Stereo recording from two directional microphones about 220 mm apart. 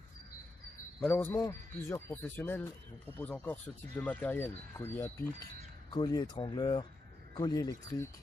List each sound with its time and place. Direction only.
1.0 s speech: 10° left (ahead or behind)